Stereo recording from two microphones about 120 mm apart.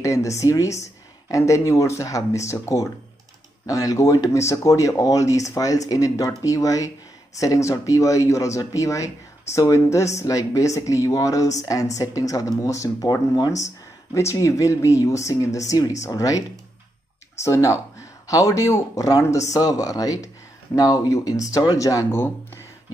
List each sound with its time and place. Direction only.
0.0 s speech: 25° left (ahead or behind)